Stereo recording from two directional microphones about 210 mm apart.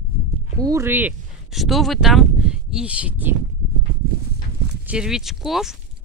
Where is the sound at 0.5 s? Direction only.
15° right (ahead or behind).